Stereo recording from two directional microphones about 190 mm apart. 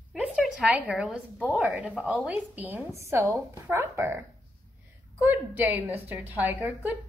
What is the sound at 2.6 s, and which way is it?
A woman's voice, 10° right (ahead or behind).